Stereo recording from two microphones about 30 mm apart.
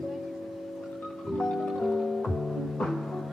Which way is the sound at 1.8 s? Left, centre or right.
Centre.